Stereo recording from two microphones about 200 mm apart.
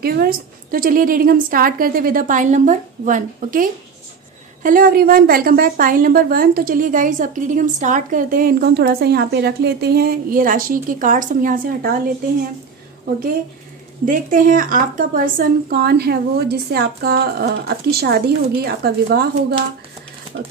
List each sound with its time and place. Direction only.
0.0 s a woman's voice: 50° right (ahead or behind)
14.0 s a woman's voice: 40° right (ahead or behind)